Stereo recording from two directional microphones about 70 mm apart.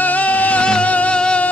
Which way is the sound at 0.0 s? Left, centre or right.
Left.